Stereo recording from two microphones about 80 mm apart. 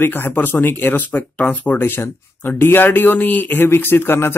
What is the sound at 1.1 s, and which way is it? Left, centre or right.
Speech, centre.